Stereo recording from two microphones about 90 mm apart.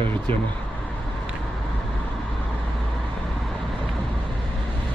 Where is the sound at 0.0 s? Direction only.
20° left (ahead or behind).